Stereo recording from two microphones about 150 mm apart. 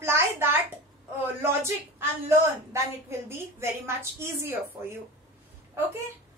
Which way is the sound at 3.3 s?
15° right (ahead or behind).